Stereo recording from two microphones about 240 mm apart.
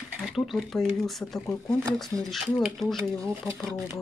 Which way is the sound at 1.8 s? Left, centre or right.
Centre.